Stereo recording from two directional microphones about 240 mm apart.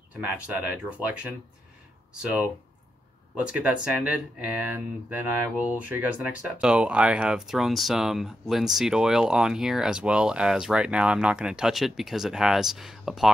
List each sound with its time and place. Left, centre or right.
0.1 s speech: centre
3.4 s speech: centre